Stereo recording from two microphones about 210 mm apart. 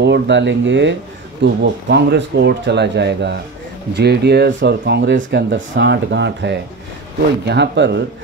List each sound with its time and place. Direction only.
0.0 s speech: 55° right (ahead or behind)